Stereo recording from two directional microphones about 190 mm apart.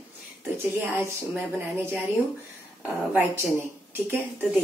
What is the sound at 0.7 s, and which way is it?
Speech, 10° right (ahead or behind).